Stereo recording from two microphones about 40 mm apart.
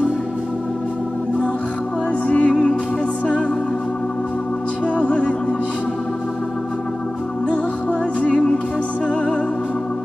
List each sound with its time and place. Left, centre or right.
2.2 s music: left
4.9 s music: left
8.2 s music: left